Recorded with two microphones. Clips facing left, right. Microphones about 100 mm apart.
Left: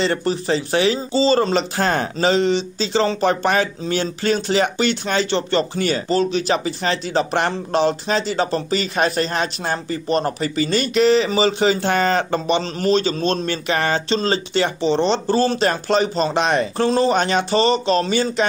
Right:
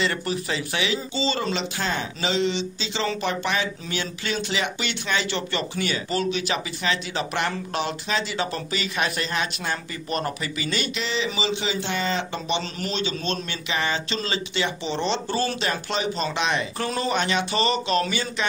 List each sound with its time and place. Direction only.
0.0 s speech: 30° left (ahead or behind)
14.0 s speech: 35° left (ahead or behind)